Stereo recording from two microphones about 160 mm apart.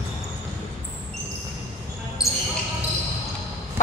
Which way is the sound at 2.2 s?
5° right (ahead or behind).